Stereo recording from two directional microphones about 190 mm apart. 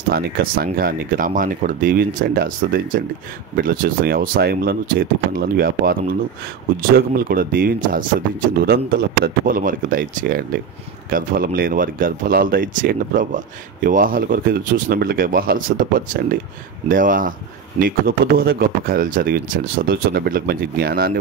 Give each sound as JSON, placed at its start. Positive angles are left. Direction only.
{"t": 0.1, "sound": "speech", "side_deg": -50}